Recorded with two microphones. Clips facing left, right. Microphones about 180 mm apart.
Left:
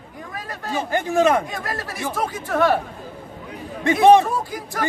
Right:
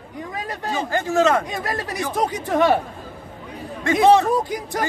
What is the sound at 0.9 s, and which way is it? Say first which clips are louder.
Speech: left 1 dB; 15° left (ahead or behind).